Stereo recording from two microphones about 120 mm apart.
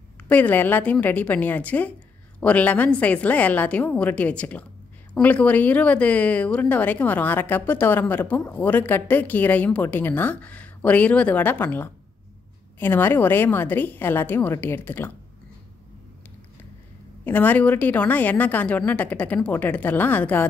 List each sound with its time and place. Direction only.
0.2 s a woman's voice: 15° left (ahead or behind)
17.2 s a woman's voice: 15° left (ahead or behind)